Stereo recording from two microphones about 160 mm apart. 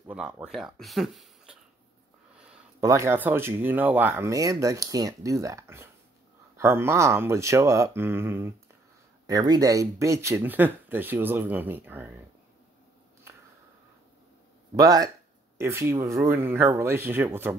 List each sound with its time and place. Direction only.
0.0 s speech: 10° right (ahead or behind)
2.8 s speech: 20° right (ahead or behind)
14.8 s speech: 25° right (ahead or behind)